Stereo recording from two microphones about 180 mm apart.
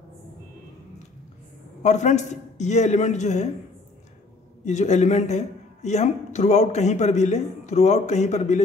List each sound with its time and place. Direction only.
1.8 s speech: 40° left (ahead or behind)
4.6 s speech: 40° left (ahead or behind)